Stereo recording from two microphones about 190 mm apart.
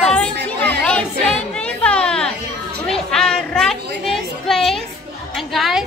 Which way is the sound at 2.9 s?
5° left (ahead or behind).